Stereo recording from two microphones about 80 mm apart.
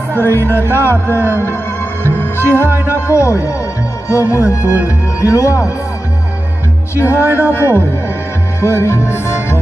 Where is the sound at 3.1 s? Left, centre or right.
Left.